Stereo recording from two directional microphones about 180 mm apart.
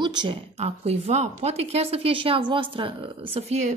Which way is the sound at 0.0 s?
25° right (ahead or behind).